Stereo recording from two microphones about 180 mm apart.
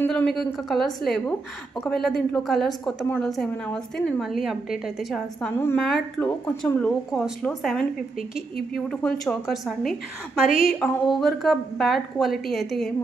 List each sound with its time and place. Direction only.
0.0 s a woman's voice: 5° left (ahead or behind)
5.9 s a woman's voice: centre (ahead or behind)
10.5 s a woman's voice: 50° left (ahead or behind)
11.1 s a woman's voice: centre (ahead or behind)